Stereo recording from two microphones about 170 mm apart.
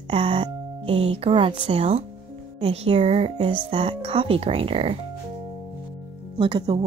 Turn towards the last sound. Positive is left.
turn(degrees=-30)  # may be behind; listen again after turning